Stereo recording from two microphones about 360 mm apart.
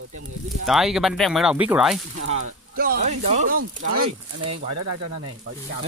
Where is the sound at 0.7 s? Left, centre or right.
Centre.